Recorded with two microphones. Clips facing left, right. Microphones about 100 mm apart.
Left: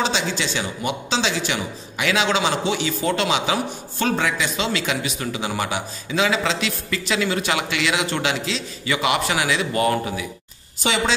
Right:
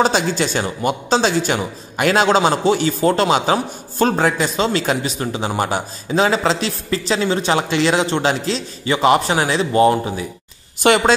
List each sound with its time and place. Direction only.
0.0 s speech: 45° right (ahead or behind); by 10.2 s 30° right (ahead or behind)
10.8 s speech: 55° right (ahead or behind)